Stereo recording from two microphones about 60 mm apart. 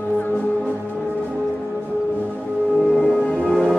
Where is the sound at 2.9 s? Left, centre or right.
Centre.